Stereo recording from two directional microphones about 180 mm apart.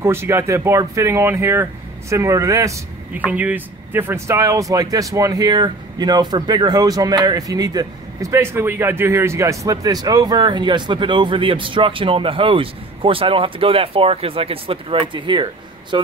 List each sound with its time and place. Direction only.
0.0 s speech: 15° right (ahead or behind)